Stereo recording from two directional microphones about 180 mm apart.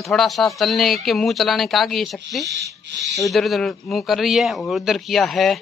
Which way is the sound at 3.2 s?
Centre (ahead or behind).